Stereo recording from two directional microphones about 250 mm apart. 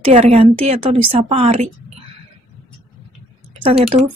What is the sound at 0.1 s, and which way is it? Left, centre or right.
Speech, right.